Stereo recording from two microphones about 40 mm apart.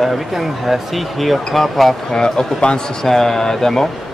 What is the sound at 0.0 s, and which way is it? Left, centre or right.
Speech, centre.